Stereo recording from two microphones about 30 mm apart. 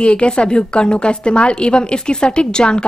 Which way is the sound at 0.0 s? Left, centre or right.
Left.